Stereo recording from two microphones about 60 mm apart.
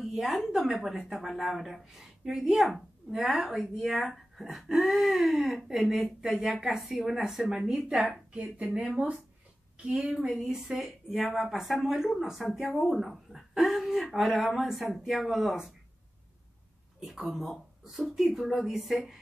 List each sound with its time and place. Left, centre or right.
0.0 s a woman's voice: centre
10.0 s a woman's voice: centre
17.0 s speech: centre